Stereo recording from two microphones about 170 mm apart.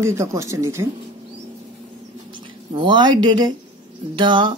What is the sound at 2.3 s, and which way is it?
Speech, 30° right (ahead or behind).